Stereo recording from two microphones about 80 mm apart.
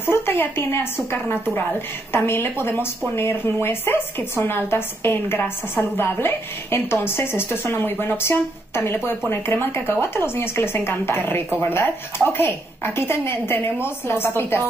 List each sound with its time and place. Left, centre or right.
0.1 s a woman's voice: left